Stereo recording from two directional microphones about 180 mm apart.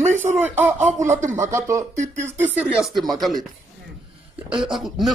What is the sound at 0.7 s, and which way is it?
Speech, 40° right (ahead or behind).